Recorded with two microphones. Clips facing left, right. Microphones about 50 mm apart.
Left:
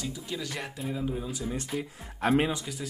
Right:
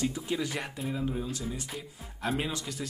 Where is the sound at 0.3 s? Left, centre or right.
Centre.